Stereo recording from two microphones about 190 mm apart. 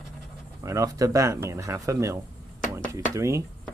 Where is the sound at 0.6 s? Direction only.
15° right (ahead or behind).